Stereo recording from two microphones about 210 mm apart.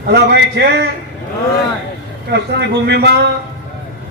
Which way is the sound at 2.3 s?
55° right (ahead or behind).